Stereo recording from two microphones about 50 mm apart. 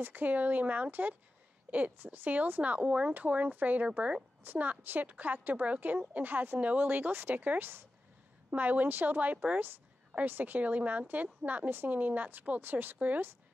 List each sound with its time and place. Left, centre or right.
0.0 s speech: right
2.1 s speech: right
8.5 s speech: right